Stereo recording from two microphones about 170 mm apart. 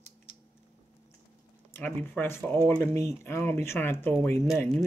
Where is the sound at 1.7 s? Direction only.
10° left (ahead or behind).